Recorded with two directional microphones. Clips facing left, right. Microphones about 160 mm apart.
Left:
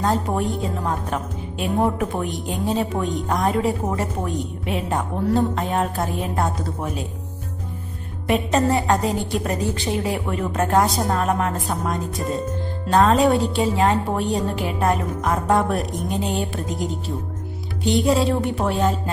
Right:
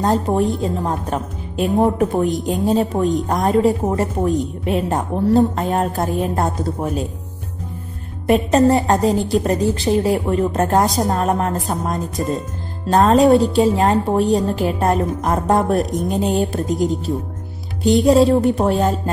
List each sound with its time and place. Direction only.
0.0 s a woman's voice: 35° right (ahead or behind)
8.3 s a woman's voice: 40° right (ahead or behind)
17.8 s a woman's voice: 40° right (ahead or behind)